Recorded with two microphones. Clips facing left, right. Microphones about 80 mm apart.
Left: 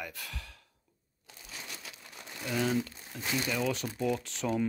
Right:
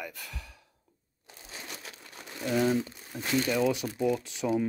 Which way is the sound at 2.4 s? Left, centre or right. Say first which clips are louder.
Right 4 dB; right.